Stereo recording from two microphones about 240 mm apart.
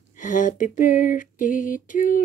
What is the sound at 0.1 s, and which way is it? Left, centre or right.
Speech, left.